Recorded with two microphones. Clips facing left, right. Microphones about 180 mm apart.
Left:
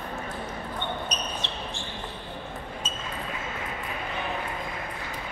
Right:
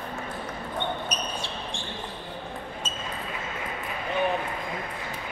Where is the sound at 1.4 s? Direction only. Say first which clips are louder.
Right 1 dB; 10° right (ahead or behind).